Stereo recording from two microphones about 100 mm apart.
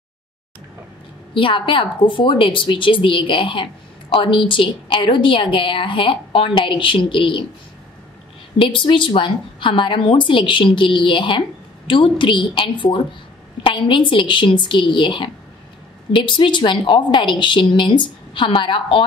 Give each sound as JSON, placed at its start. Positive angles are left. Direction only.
{"t": 1.3, "sound": "a woman's voice", "side_deg": 60}
{"t": 8.5, "sound": "a woman's voice", "side_deg": 55}